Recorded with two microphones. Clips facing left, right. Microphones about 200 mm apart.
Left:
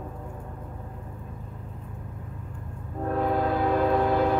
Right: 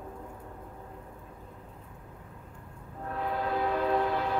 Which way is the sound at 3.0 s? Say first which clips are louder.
Left 8 dB; 50° left (ahead or behind).